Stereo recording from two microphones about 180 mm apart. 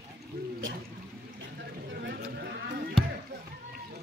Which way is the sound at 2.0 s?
60° right (ahead or behind).